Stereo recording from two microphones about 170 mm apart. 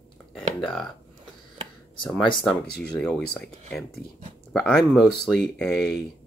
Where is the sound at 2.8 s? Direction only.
5° left (ahead or behind).